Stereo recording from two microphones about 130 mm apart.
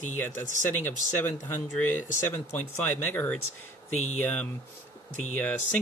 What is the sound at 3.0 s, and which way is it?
Speech, 15° left (ahead or behind).